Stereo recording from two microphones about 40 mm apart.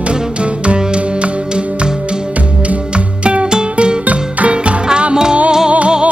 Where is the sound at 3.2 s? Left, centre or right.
Right.